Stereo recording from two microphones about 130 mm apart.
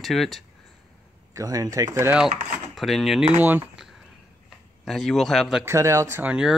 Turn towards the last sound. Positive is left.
turn(degrees=-10)  # may be behind; listen again after turning